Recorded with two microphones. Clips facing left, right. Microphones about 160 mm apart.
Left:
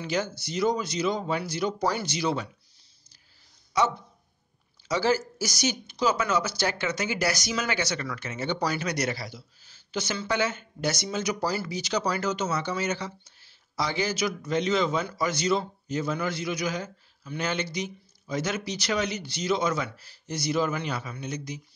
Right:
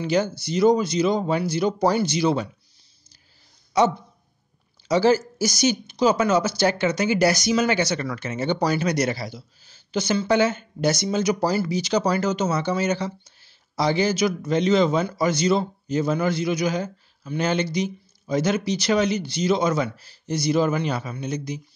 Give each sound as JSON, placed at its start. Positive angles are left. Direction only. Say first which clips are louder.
{"t": 0.0, "sound": "speech", "louder": "right 7 dB", "side_deg": -25}
{"t": 4.9, "sound": "speech", "louder": "right 7 dB", "side_deg": -25}
{"t": 10.3, "sound": "speech", "louder": "right 7 dB", "side_deg": -30}